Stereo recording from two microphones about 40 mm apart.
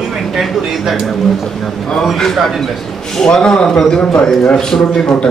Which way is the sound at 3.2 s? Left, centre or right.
Centre.